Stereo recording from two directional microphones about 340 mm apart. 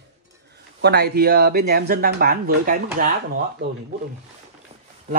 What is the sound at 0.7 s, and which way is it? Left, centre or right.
Speech, right.